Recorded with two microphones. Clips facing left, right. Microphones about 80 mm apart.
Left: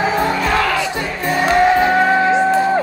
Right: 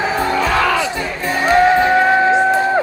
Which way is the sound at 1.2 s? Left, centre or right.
Centre.